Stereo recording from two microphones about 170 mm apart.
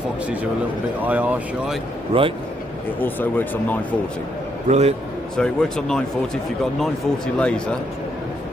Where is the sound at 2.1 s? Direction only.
35° right (ahead or behind).